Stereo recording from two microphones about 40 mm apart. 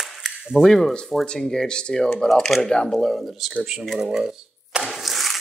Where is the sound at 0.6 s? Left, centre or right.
Centre.